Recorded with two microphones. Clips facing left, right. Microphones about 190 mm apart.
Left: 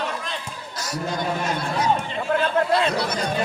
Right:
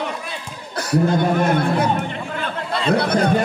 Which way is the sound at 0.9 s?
60° right (ahead or behind).